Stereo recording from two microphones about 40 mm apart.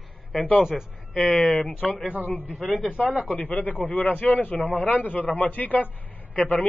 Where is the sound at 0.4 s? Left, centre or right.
Left.